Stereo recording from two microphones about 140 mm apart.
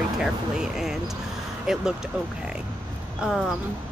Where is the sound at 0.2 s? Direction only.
5° right (ahead or behind).